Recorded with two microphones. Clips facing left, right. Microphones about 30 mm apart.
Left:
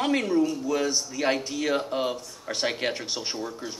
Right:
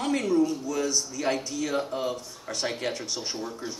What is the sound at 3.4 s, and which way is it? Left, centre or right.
Speech, centre.